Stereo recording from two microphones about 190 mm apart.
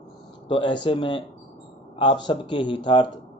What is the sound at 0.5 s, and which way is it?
Speech, 25° left (ahead or behind).